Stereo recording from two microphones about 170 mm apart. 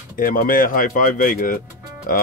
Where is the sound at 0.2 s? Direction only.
55° left (ahead or behind).